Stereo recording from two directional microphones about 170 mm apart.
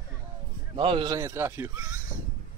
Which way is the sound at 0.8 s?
30° right (ahead or behind).